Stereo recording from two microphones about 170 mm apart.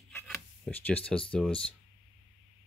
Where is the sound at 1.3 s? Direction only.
5° left (ahead or behind).